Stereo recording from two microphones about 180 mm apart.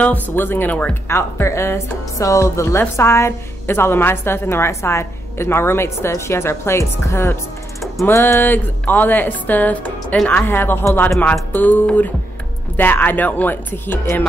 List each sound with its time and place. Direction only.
0.0 s a woman's voice: 10° left (ahead or behind)